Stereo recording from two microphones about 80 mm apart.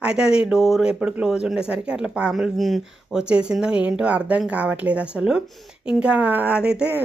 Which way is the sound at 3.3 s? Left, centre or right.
Centre.